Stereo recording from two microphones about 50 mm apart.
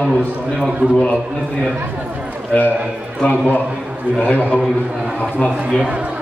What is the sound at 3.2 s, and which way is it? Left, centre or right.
A man's voice, left.